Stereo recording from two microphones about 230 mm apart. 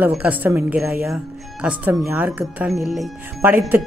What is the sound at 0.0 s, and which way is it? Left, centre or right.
Speech, centre.